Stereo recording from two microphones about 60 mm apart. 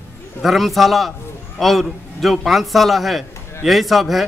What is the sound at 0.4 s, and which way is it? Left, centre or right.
A man's voice, centre.